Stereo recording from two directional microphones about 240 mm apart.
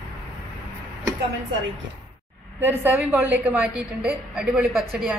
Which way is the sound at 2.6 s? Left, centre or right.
Centre.